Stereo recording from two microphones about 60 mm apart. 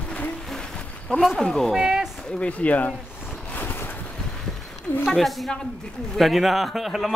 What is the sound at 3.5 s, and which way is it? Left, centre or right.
Boat, left.